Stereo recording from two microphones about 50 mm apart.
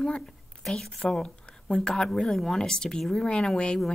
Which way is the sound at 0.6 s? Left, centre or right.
Centre.